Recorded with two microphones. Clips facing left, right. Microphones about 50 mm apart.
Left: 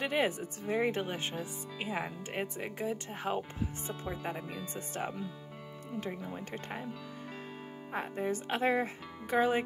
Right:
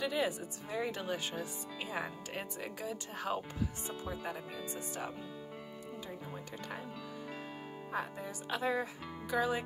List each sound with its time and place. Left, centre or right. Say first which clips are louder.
0.0 s speech: left 3 dB; left
4.7 s speech: left 5 dB; left
7.9 s speech: left 6 dB; left